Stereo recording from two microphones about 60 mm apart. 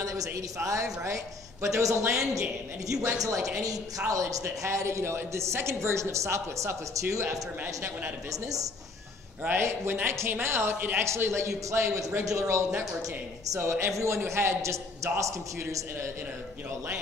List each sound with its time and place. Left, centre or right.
0.0 s a sound: right
0.4 s a woman's voice: right
7.6 s speech: right
8.3 s speech: right
9.5 s a woman's voice: right
13.6 s a woman's voice: right